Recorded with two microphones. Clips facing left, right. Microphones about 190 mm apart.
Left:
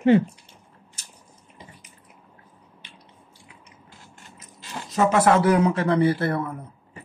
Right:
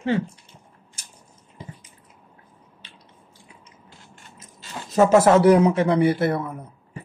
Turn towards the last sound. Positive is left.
turn(degrees=-20)  # may be behind; listen again after turning